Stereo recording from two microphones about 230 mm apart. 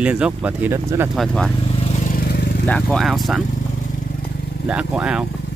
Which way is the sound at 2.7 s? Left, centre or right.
Centre.